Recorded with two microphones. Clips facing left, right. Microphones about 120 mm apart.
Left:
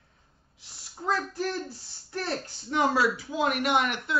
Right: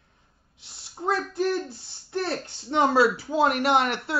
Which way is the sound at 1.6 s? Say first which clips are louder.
Right 1 dB; 25° right (ahead or behind).